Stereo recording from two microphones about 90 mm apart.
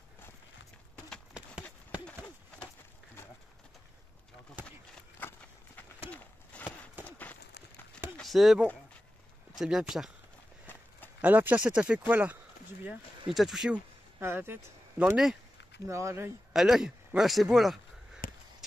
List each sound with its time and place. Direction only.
1.3 s a sound: 10° right (ahead or behind)
5.2 s walk: 20° left (ahead or behind)
7.1 s horse: 20° left (ahead or behind)
8.2 s speech: centre (ahead or behind)
11.1 s speech: 20° right (ahead or behind)
13.3 s speech: 5° right (ahead or behind)
14.2 s speech: 25° right (ahead or behind)
15.0 s speech: 10° right (ahead or behind)
15.9 s speech: 35° right (ahead or behind)
16.5 s speech: 5° right (ahead or behind)